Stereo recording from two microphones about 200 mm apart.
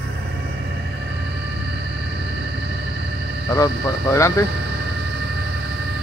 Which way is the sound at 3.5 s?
15° left (ahead or behind).